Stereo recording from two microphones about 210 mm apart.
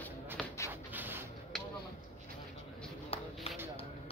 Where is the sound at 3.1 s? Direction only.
30° left (ahead or behind).